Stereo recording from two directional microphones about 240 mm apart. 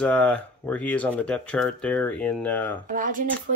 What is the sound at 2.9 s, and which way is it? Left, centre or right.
Speech, right.